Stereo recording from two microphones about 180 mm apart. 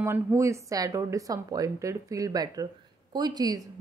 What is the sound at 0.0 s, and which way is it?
Speech, 15° right (ahead or behind).